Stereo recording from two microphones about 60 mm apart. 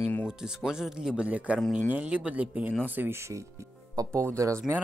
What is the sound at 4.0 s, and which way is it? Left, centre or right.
Speech, right.